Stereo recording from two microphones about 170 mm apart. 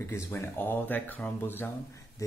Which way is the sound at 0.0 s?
15° left (ahead or behind).